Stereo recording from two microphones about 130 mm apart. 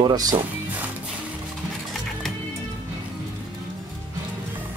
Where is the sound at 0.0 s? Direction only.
30° right (ahead or behind).